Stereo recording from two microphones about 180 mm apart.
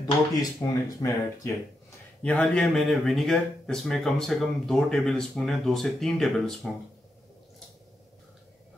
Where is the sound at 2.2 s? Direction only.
5° left (ahead or behind).